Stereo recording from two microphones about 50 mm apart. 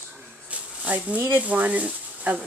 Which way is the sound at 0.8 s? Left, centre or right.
Right.